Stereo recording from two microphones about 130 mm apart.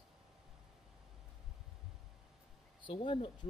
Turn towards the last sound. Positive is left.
turn(degrees=40)  # may be behind; listen again after turning